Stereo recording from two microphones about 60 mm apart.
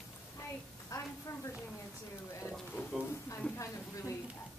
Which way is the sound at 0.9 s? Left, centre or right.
Left.